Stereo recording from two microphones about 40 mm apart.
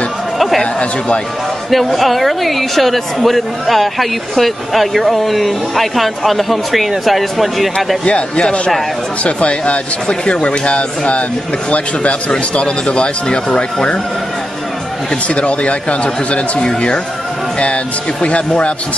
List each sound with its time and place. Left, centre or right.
0.6 s speech: left
1.7 s a woman's voice: centre
8.0 s speech: left
12.3 s speech: left
15.2 s speech: left